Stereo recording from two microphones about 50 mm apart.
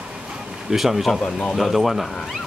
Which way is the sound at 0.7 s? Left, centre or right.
Centre.